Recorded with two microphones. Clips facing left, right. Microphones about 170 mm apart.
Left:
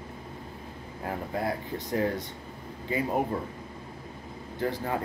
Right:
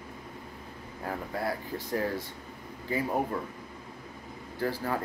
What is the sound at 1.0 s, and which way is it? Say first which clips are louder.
Speech: left 2 dB; 20° left (ahead or behind).